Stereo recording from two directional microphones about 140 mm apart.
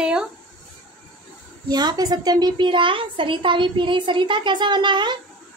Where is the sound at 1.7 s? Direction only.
30° right (ahead or behind).